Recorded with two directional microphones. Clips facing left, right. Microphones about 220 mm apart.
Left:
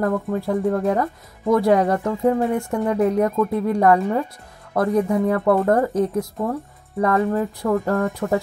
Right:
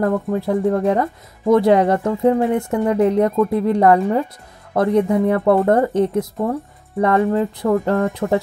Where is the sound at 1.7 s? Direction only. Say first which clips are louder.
Right 3 dB; 25° right (ahead or behind).